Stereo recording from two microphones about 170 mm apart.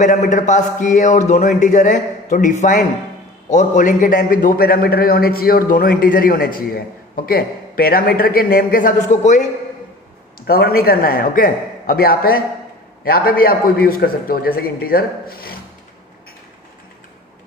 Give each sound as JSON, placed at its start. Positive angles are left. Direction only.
{"t": 0.0, "sound": "a man's voice", "side_deg": 50}
{"t": 10.4, "sound": "a man's voice", "side_deg": 65}